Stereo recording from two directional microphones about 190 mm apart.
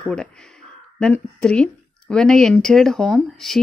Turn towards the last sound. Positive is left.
turn(degrees=0)  # may be behind; listen again after turning